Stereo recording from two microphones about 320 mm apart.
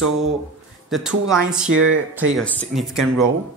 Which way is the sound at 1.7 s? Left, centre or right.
Right.